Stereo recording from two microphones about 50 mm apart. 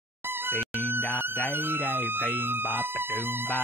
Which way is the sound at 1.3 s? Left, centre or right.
Left.